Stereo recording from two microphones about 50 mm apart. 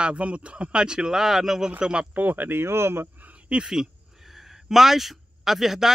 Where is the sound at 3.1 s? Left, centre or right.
Right.